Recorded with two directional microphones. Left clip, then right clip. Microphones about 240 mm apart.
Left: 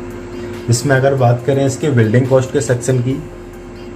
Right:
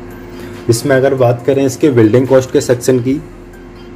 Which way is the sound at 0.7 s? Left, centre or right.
Right.